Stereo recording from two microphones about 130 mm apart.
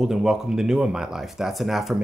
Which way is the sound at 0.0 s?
5° right (ahead or behind).